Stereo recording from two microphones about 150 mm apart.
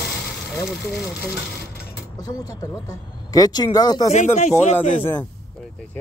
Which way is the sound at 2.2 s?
25° left (ahead or behind).